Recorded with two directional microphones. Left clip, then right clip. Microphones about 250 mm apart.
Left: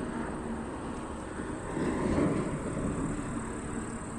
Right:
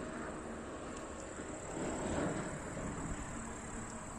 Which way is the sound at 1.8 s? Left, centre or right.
Left.